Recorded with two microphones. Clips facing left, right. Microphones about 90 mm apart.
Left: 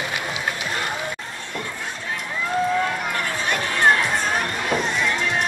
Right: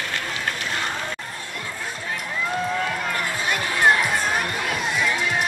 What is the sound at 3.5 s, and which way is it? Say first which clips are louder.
Crowd: left 1 dB; 5° right (ahead or behind).